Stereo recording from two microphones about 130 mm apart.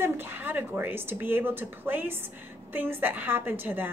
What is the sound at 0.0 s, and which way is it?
Speech, 15° right (ahead or behind).